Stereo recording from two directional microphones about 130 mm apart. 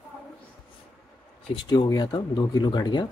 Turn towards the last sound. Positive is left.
turn(degrees=35)  # may be behind; listen again after turning